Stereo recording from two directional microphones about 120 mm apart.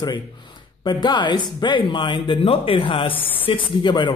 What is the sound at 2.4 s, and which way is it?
A man's voice, 50° left (ahead or behind).